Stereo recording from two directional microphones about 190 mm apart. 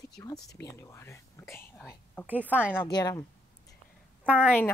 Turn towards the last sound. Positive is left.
turn(degrees=-10)  # may be behind; listen again after turning